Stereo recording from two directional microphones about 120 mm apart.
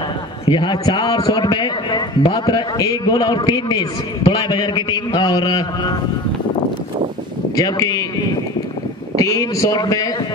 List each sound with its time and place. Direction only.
0.5 s a man's voice: 40° left (ahead or behind)
7.5 s a man's voice: 30° left (ahead or behind)
9.1 s a man's voice: 30° left (ahead or behind)